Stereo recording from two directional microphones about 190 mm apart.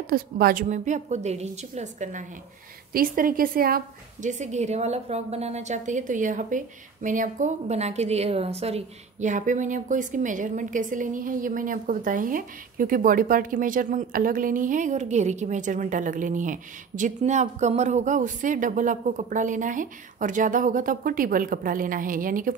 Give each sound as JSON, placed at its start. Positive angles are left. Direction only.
{"t": 0.1, "sound": "a woman's voice", "side_deg": -50}